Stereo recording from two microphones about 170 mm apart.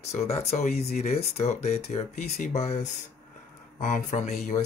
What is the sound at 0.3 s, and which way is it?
Speech, 40° left (ahead or behind).